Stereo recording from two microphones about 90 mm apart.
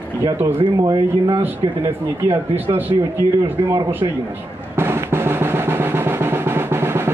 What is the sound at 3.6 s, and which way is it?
Speech, 65° right (ahead or behind).